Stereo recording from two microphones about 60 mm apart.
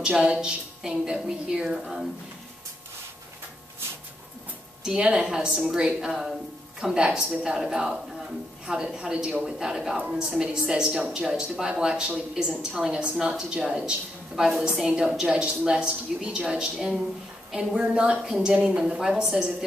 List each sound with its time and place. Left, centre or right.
0.0 s a woman's voice: centre
4.8 s a woman's voice: centre
9.9 s a woman's voice: centre